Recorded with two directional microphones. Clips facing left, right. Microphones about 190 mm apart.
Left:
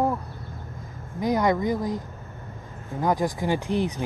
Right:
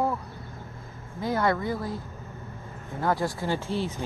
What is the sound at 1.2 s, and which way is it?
Speech, 15° left (ahead or behind).